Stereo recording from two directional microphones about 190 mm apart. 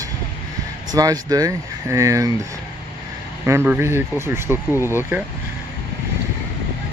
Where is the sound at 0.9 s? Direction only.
20° right (ahead or behind).